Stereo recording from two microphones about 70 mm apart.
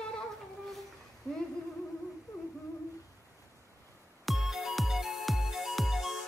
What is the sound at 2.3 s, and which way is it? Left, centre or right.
Humming, left.